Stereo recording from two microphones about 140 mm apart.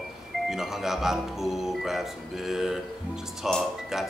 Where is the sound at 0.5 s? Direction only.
5° right (ahead or behind).